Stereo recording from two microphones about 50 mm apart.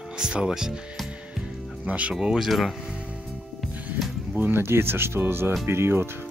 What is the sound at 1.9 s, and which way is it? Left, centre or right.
Speech, right.